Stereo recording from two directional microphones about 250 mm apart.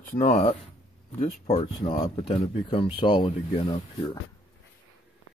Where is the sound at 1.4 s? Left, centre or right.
Left.